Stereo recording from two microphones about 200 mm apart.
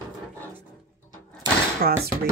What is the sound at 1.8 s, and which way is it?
Speech, 50° right (ahead or behind).